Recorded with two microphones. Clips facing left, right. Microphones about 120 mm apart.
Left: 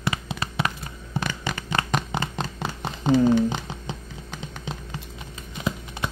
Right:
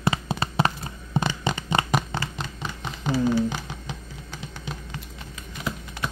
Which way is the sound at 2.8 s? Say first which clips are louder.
Left 6 dB; 35° left (ahead or behind).